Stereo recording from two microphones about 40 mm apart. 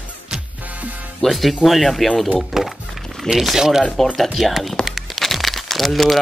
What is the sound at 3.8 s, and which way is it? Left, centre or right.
Speech, centre.